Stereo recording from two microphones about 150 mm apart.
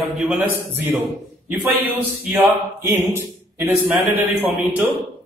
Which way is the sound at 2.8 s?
15° right (ahead or behind).